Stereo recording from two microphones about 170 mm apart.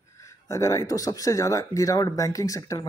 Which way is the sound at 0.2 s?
20° left (ahead or behind).